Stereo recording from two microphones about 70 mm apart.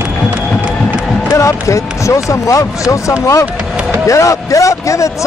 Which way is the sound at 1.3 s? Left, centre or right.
Left.